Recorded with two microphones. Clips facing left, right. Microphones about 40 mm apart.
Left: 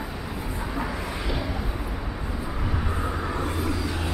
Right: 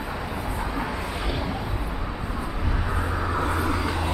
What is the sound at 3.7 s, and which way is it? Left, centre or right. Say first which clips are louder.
Vehicle: right 3 dB; right.